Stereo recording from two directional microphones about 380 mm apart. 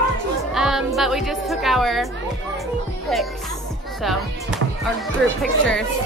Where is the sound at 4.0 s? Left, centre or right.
Centre.